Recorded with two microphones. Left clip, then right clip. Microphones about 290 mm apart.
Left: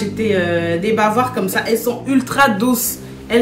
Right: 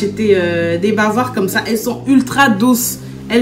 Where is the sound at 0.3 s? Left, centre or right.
Centre.